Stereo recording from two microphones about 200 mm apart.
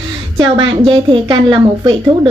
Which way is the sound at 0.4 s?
25° right (ahead or behind).